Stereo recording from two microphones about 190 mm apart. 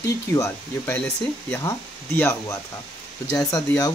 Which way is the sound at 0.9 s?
5° left (ahead or behind).